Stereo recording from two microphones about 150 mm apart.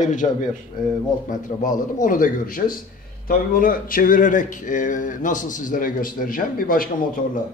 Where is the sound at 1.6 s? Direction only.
60° left (ahead or behind).